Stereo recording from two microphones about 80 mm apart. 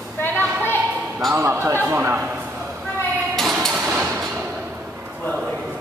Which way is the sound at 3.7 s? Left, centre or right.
Centre.